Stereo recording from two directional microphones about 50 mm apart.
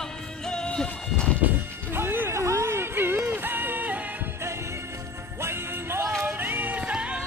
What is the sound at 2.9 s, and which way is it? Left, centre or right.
Music, right.